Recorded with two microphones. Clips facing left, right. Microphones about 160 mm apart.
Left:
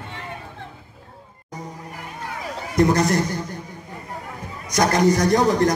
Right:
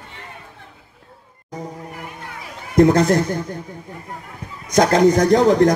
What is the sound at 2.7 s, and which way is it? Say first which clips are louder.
Speech: right 5 dB; 55° right (ahead or behind).